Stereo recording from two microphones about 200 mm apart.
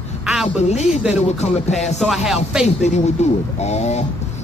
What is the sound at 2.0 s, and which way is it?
Speech, centre (ahead or behind).